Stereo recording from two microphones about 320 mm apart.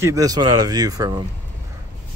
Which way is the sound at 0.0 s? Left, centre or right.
Centre.